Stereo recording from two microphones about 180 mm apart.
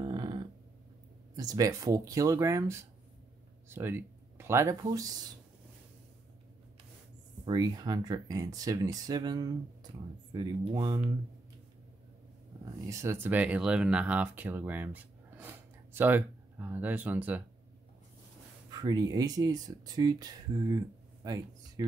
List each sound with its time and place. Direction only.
0.0 s a sound: 25° right (ahead or behind)
1.3 s speech: 20° right (ahead or behind)
7.4 s speech: 20° right (ahead or behind)
12.9 s speech: 15° right (ahead or behind)
18.7 s speech: 20° right (ahead or behind)